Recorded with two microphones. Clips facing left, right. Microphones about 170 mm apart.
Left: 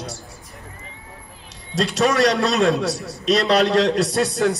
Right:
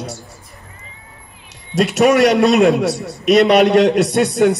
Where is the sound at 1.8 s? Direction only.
20° right (ahead or behind).